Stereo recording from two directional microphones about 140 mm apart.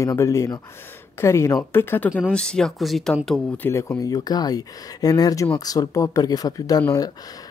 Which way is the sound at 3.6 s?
20° left (ahead or behind).